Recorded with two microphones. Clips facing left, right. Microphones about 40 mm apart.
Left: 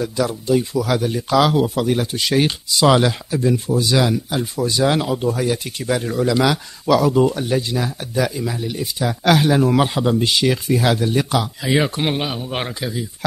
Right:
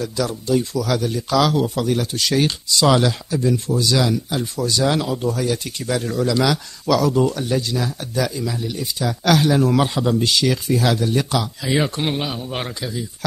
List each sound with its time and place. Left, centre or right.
0.0 s speech: centre